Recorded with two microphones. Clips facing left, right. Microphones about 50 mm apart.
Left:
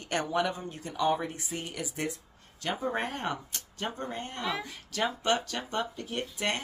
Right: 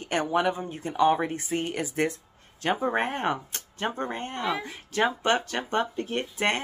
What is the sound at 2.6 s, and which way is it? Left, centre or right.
A woman's voice, right.